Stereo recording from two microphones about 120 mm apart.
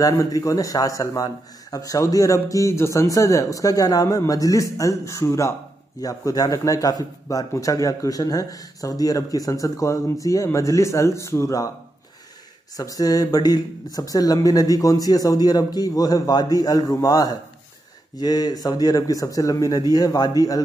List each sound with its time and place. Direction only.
0.0 s a man's voice: 30° left (ahead or behind)
12.7 s speech: 30° left (ahead or behind)